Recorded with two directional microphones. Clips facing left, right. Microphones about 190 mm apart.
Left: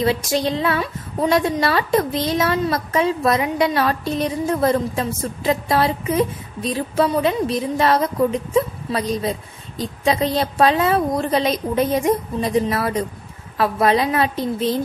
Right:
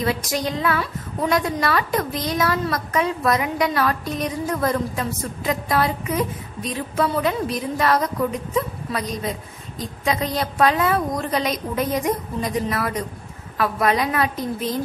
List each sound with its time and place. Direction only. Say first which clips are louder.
0.0 s a woman's voice: left 4 dB; 25° left (ahead or behind)